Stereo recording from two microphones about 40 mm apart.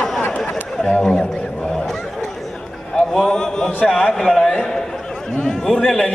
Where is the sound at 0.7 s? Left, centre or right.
Centre.